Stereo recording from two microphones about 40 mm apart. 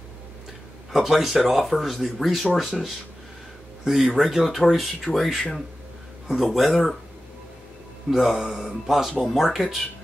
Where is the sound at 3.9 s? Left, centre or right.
Centre.